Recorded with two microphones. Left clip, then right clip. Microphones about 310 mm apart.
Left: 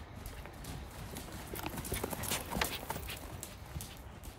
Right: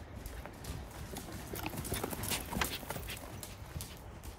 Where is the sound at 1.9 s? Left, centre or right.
Centre.